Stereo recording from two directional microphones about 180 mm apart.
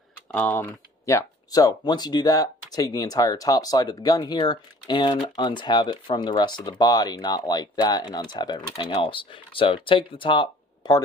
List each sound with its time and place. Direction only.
0.3 s speech: 10° left (ahead or behind); by 11.0 s 25° left (ahead or behind)